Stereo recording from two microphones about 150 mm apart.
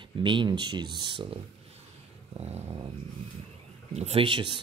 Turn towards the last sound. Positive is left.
turn(degrees=-35)  # may be behind; listen again after turning